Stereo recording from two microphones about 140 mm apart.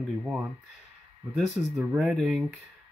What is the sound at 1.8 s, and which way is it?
Speech, centre (ahead or behind).